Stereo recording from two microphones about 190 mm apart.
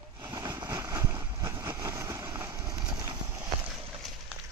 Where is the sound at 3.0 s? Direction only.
15° right (ahead or behind).